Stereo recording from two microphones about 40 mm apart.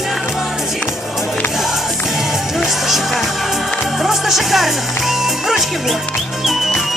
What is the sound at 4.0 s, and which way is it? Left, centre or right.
Speech, centre.